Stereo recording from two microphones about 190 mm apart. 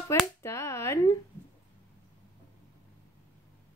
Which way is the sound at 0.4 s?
15° left (ahead or behind).